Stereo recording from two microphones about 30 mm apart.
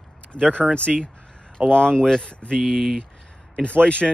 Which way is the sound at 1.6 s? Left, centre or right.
Right.